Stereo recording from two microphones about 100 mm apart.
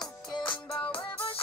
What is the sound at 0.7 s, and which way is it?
Music, 15° left (ahead or behind).